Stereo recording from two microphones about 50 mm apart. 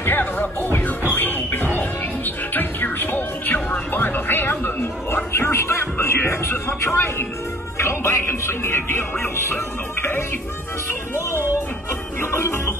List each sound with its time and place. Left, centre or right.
0.0 s music: left
7.7 s speech: left
10.9 s speech: left
12.2 s music: left